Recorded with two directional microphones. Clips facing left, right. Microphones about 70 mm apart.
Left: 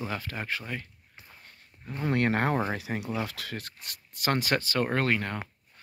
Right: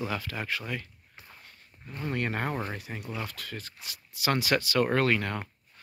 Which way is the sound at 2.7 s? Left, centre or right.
Left.